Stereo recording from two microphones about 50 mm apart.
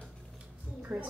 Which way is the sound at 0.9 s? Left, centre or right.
Right.